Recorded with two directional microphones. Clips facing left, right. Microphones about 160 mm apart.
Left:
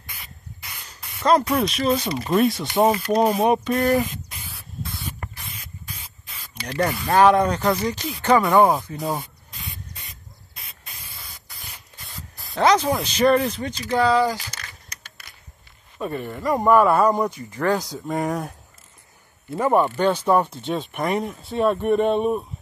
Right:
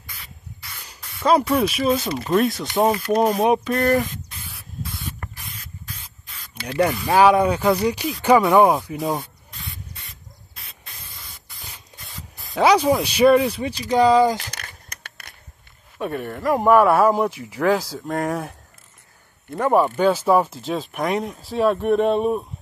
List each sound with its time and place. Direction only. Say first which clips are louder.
1.2 s speech: right 1 dB; 5° right (ahead or behind); by 4.4 s 10° left (ahead or behind)
6.5 s speech: right 3 dB; 5° right (ahead or behind)
12.0 s speech: even; centre (ahead or behind); by 14.3 s 15° right (ahead or behind)
14.3 s a sound: right 4 dB; 55° right (ahead or behind)
16.0 s speech: right 1 dB; centre (ahead or behind)
19.5 s speech: right 1 dB; centre (ahead or behind)